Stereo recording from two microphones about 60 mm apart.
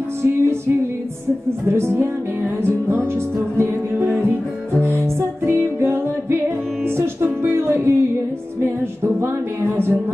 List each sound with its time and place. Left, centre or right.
0.2 s music: right
1.7 s music: right
7.4 s music: right
9.0 s music: right